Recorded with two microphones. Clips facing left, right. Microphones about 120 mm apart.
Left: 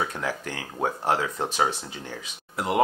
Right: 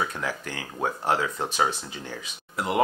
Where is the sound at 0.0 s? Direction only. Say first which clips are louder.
Left 1 dB; 35° left (ahead or behind).